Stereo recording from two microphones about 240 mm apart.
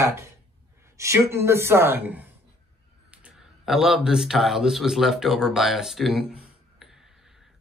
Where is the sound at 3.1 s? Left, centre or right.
Centre.